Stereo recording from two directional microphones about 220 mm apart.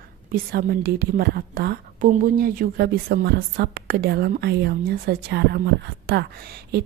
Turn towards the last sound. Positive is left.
turn(degrees=-45)  # may be behind; listen again after turning